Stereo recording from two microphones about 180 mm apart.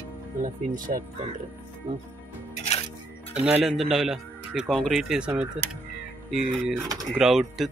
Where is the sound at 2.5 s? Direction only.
35° left (ahead or behind).